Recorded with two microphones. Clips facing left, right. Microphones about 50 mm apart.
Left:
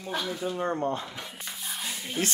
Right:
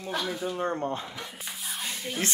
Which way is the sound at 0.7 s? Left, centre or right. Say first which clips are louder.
Left 3 dB; left.